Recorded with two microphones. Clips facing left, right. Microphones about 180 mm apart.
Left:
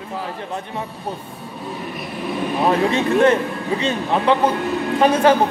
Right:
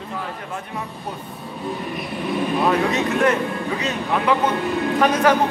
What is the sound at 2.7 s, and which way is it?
A man's voice, 30° left (ahead or behind).